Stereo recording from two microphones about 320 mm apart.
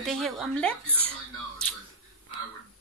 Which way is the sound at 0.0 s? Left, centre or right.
Centre.